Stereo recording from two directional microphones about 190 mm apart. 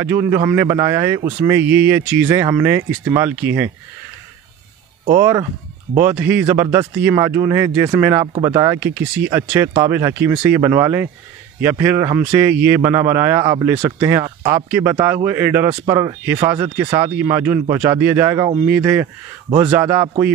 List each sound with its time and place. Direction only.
0.0 s speech: 15° right (ahead or behind)
5.1 s speech: 15° right (ahead or behind)